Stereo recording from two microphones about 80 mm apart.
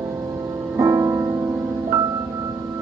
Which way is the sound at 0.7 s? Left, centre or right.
Right.